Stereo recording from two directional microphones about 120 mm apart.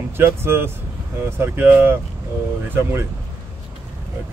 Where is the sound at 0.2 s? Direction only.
20° right (ahead or behind).